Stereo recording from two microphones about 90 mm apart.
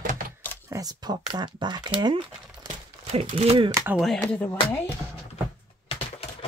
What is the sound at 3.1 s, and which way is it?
Speech, 90° right.